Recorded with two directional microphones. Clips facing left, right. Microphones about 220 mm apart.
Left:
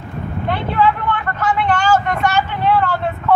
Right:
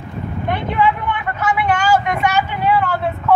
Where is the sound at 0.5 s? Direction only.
15° right (ahead or behind).